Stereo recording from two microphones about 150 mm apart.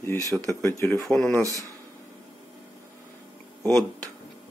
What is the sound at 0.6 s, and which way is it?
Speech, 15° left (ahead or behind).